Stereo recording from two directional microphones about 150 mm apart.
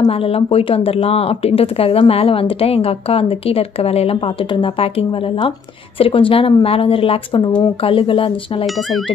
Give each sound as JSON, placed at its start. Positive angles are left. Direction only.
{"t": 0.1, "sound": "speech", "side_deg": 40}